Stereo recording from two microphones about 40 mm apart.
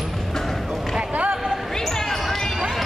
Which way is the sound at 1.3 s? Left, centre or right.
Centre.